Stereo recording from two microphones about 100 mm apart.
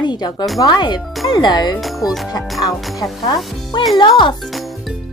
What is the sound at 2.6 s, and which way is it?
Speech, 40° left (ahead or behind).